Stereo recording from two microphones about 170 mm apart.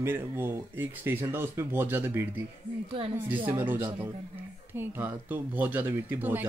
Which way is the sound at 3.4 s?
10° right (ahead or behind).